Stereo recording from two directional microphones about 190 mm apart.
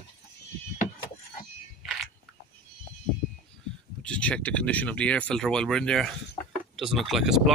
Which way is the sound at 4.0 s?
5° left (ahead or behind).